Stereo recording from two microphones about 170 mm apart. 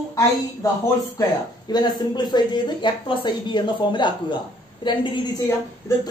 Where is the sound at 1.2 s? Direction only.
20° left (ahead or behind).